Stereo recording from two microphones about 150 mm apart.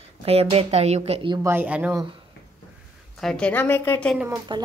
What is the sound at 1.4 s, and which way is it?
Speech, 10° right (ahead or behind).